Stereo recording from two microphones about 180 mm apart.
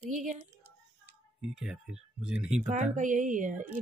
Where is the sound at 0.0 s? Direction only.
45° right (ahead or behind).